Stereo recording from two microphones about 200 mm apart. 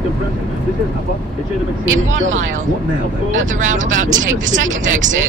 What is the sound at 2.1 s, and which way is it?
Speech, 75° right (ahead or behind).